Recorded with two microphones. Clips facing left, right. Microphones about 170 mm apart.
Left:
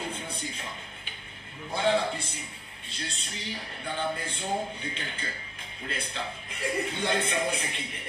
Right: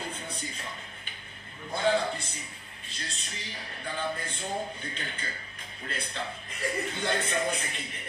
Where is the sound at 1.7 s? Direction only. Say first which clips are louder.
Left 1 dB; 30° left (ahead or behind).